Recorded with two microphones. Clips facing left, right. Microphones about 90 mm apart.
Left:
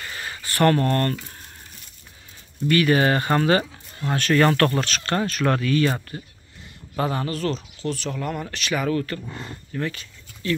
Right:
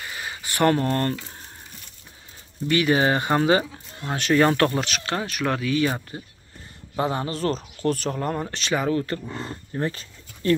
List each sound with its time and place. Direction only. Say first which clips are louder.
0.0 s a sound: even; 15° right (ahead or behind)
2.7 s speech: left 1 dB; 15° right (ahead or behind); by 7.6 s 35° right (ahead or behind)
7.8 s speech: right 4 dB; 45° right (ahead or behind)